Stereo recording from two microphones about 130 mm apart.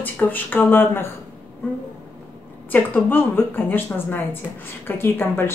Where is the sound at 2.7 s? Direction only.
15° left (ahead or behind).